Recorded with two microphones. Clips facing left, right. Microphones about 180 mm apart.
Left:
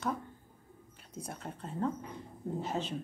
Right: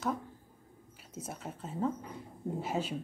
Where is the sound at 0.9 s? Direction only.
5° right (ahead or behind).